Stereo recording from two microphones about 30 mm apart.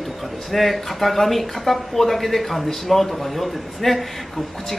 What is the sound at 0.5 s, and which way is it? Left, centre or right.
A man's voice, centre.